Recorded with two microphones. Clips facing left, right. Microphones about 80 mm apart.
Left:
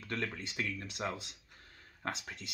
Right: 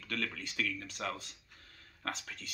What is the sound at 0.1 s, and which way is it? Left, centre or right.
Speech, left.